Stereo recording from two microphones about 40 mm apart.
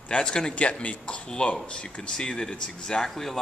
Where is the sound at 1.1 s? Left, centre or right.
Left.